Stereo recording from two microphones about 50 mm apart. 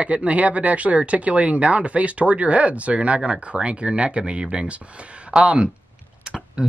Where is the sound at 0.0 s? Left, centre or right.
Right.